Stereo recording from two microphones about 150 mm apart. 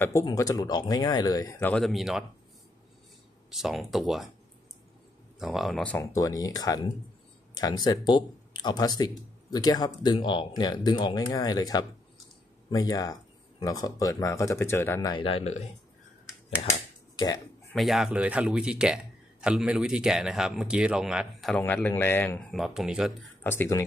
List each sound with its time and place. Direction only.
0.0 s speech: 20° left (ahead or behind)
1.6 s speech: 10° left (ahead or behind)
1.9 s speech: centre (ahead or behind)
3.4 s speech: centre (ahead or behind)
5.4 s speech: centre (ahead or behind)
5.9 s speech: 25° left (ahead or behind); by 15.7 s 45° left (ahead or behind)
17.1 s speech: 30° left (ahead or behind)
17.7 s speech: centre (ahead or behind)
21.6 s speech: 10° left (ahead or behind)
22.5 s speech: centre (ahead or behind)
23.4 s speech: 15° left (ahead or behind)